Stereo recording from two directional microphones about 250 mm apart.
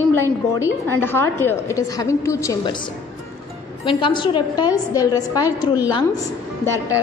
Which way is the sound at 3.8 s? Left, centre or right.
Centre.